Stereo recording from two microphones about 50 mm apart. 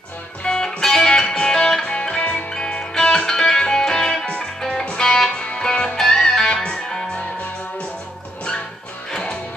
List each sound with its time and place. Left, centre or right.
0.4 s music: centre
9.1 s music: centre